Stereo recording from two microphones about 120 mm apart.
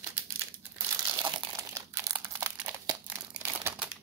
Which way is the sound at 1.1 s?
45° right (ahead or behind).